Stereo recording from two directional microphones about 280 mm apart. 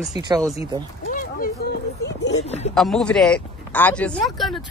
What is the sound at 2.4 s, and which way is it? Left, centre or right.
Speech, left.